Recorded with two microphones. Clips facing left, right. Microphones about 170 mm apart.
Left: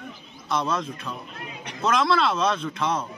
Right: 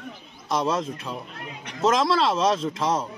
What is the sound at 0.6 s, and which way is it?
A man's voice, 30° right (ahead or behind).